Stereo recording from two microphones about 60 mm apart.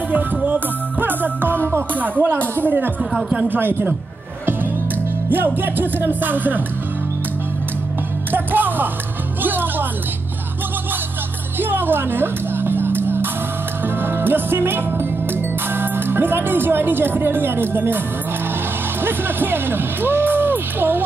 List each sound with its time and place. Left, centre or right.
0.1 s music: right
5.3 s music: right
8.3 s music: right
11.6 s music: right
15.7 s speech: right
19.0 s speech: right